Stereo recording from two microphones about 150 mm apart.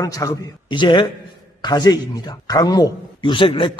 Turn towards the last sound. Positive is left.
turn(degrees=35)  # may be behind; listen again after turning